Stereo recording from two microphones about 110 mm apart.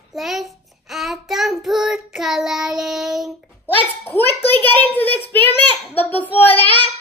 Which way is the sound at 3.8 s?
20° left (ahead or behind).